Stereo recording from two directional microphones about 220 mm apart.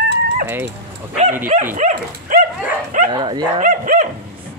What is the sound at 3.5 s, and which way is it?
Speech, 35° right (ahead or behind).